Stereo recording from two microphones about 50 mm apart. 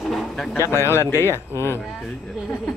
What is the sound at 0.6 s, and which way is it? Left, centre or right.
Speech, left.